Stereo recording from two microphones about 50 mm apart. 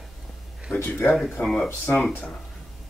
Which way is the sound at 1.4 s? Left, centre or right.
Centre.